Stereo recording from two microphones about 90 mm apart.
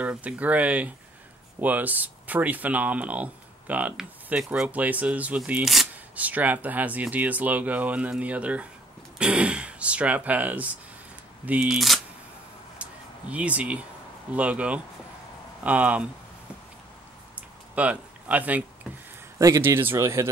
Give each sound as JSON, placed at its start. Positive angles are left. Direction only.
{"t": 0.0, "sound": "speech", "side_deg": -15}
{"t": 13.3, "sound": "speech", "side_deg": -15}
{"t": 17.4, "sound": "a sound", "side_deg": -15}
{"t": 19.3, "sound": "speech", "side_deg": -35}